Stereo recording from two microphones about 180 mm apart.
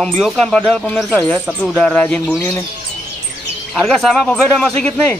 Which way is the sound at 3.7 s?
Centre (ahead or behind).